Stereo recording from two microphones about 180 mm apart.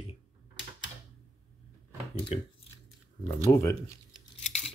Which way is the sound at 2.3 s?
40° left (ahead or behind).